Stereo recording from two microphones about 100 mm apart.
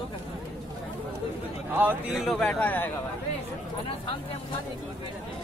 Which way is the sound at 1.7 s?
20° right (ahead or behind).